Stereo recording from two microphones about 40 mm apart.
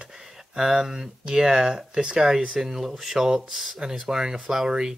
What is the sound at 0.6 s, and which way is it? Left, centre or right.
Speech, centre.